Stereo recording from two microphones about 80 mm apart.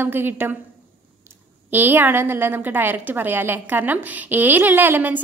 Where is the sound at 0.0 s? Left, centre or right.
Right.